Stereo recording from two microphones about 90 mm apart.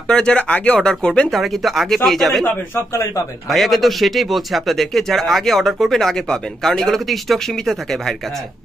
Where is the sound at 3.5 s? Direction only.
Centre (ahead or behind).